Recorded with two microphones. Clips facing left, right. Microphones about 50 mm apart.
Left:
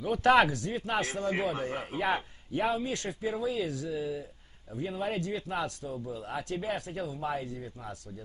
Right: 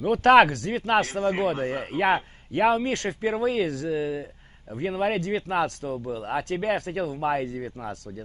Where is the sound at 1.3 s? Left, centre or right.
Right.